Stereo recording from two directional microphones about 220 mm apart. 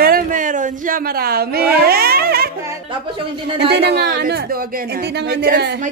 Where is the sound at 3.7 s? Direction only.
50° right (ahead or behind).